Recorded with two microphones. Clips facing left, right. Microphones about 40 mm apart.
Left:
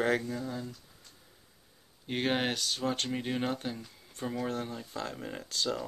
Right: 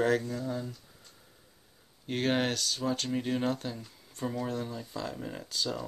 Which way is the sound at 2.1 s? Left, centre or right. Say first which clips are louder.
Right 1 dB; centre.